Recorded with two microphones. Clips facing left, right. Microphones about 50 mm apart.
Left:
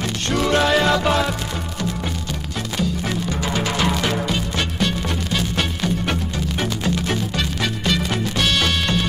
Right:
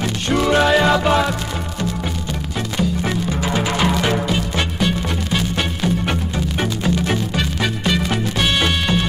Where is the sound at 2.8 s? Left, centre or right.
Centre.